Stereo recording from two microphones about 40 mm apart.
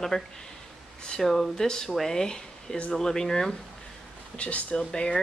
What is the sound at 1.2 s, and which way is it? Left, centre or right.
Speech, centre.